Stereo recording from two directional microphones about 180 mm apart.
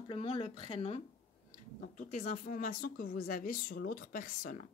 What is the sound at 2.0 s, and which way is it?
Speech, 40° left (ahead or behind).